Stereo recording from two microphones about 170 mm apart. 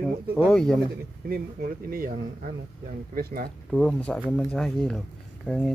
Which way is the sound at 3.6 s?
5° left (ahead or behind).